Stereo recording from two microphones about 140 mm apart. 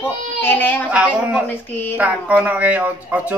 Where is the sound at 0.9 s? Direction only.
10° right (ahead or behind).